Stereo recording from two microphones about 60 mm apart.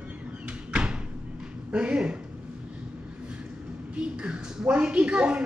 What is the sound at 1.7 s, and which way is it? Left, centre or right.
Speech, centre.